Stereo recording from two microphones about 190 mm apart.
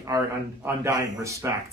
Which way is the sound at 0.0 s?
15° right (ahead or behind).